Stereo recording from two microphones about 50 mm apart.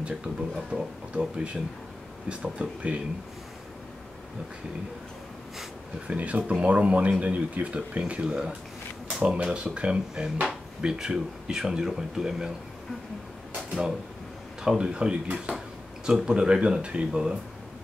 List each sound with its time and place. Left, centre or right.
0.7 s speech: centre
6.0 s speech: right
8.1 s speech: centre
14.6 s speech: centre